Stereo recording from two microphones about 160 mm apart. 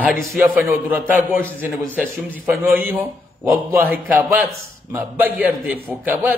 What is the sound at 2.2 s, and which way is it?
A man's voice, 10° right (ahead or behind).